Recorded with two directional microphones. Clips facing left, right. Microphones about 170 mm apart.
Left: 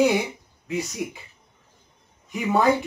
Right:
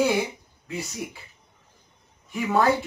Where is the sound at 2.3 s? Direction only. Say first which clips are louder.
Left 1 dB; 15° left (ahead or behind).